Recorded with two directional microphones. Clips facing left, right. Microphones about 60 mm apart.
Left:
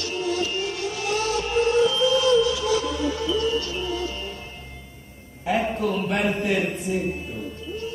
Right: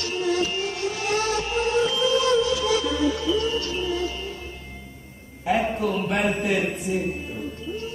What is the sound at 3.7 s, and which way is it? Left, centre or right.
Music, centre.